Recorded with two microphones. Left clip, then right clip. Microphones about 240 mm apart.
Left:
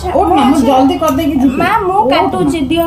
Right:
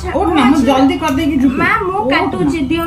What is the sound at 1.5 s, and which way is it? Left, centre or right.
Speech, centre.